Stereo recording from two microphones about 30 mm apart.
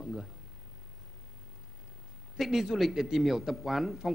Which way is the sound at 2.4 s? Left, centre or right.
Centre.